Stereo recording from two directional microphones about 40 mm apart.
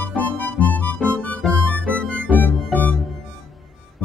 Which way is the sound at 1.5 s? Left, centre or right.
Left.